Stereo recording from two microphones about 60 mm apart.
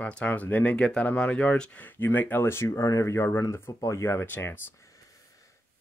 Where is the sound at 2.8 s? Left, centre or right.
Left.